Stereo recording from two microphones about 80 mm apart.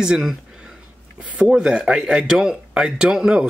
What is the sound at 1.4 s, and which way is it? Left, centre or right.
Speech, centre.